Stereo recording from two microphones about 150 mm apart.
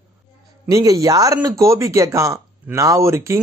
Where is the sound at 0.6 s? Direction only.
20° right (ahead or behind).